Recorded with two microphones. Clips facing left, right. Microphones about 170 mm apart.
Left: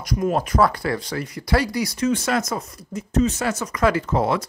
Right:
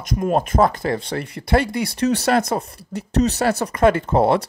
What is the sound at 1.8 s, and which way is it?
Speech, 65° right (ahead or behind).